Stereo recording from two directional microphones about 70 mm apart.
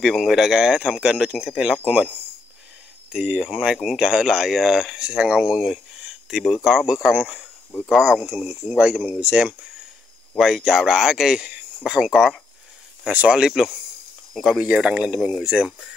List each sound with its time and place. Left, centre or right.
0.0 s speech: centre
3.1 s speech: centre
6.3 s speech: centre
8.5 s speech: centre
13.1 s speech: centre
14.6 s speech: centre